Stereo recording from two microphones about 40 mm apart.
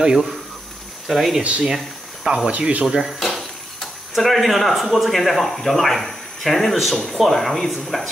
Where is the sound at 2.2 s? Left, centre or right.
Centre.